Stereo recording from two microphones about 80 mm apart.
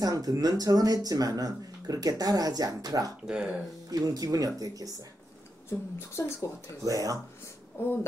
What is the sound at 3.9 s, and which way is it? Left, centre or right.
Speech, right.